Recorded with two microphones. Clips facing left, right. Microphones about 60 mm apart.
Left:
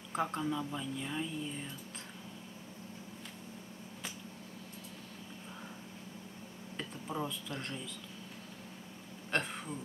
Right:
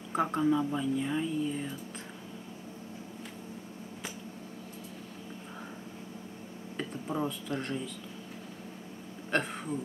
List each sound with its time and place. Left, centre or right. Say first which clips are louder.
0.1 s speech: right 7 dB; centre
6.8 s speech: right 5 dB; centre
9.3 s speech: right 5 dB; centre